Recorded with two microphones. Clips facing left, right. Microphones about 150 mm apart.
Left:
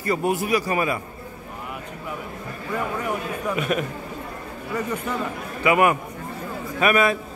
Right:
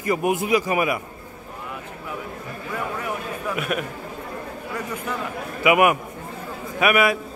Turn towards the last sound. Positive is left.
turn(degrees=-10)  # may be behind; listen again after turning